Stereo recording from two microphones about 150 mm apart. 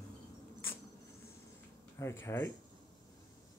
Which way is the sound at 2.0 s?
20° left (ahead or behind).